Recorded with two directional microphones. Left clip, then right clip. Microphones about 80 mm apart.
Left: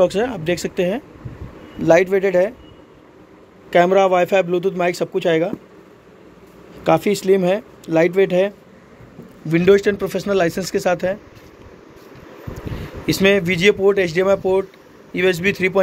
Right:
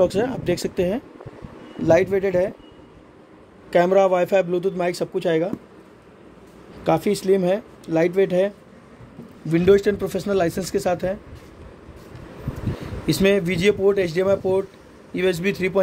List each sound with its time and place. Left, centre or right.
0.0 s speech: right
1.8 s a man's voice: centre
3.7 s speech: centre
6.8 s speech: centre
9.5 s speech: right
13.0 s speech: centre